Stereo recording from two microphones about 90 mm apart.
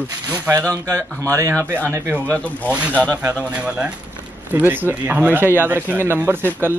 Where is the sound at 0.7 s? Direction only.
35° right (ahead or behind).